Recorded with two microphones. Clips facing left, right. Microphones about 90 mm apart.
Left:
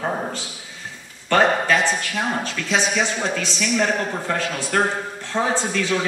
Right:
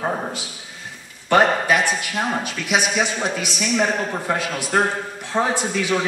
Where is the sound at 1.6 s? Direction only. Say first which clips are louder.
Even; 15° right (ahead or behind).